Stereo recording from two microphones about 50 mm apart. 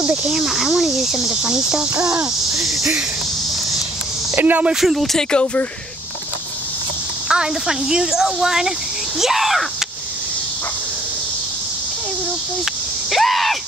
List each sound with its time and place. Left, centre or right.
0.0 s speech: right
0.3 s speech: centre
4.4 s speech: right
4.7 s speech: centre
5.3 s speech: left
7.2 s speech: centre
12.6 s a sound: centre